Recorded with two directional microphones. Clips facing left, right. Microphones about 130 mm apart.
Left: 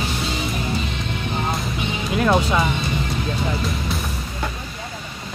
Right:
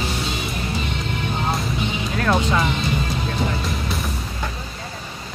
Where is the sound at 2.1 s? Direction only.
10° left (ahead or behind).